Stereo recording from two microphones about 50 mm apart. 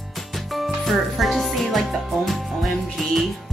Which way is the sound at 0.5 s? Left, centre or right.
Centre.